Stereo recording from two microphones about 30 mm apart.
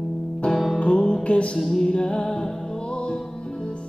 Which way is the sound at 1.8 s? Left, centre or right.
Left.